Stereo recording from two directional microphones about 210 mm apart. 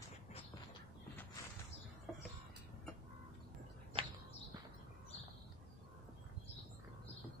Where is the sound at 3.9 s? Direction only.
25° right (ahead or behind).